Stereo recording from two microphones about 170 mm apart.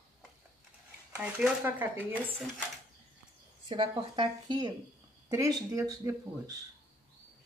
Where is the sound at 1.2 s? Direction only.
5° right (ahead or behind).